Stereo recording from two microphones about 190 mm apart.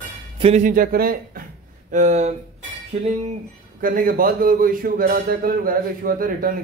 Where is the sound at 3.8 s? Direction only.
45° right (ahead or behind).